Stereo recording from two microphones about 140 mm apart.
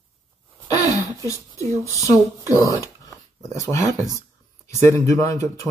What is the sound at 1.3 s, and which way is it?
Speech, 25° left (ahead or behind).